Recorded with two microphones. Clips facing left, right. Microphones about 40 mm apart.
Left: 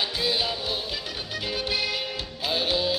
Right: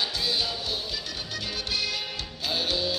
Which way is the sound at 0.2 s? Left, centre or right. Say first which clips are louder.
Left 2 dB; centre.